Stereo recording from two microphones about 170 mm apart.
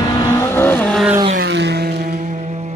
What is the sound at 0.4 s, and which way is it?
Vehicle, 15° left (ahead or behind).